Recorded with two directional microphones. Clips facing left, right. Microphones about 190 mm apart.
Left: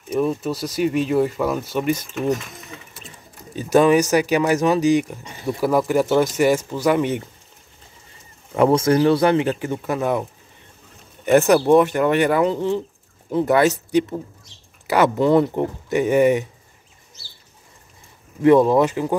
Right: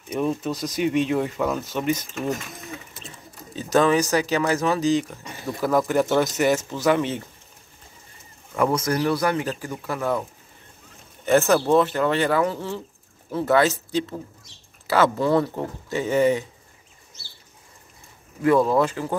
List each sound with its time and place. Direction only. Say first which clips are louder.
0.2 s speech: left 2 dB; 5° left (ahead or behind)
3.5 s speech: left 4 dB; 15° left (ahead or behind)
8.5 s speech: left 6 dB; 30° left (ahead or behind)
11.2 s speech: left 4 dB; 15° left (ahead or behind)
18.4 s speech: left 5 dB; 20° left (ahead or behind)